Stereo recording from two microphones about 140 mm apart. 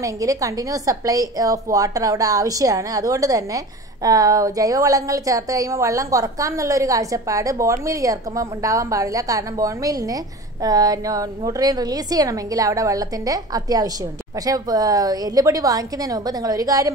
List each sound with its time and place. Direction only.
0.0 s a woman's voice: 25° right (ahead or behind)